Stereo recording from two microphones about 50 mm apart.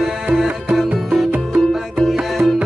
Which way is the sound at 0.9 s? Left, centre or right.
Centre.